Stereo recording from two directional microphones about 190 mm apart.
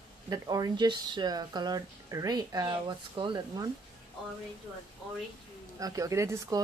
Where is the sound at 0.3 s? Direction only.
20° right (ahead or behind).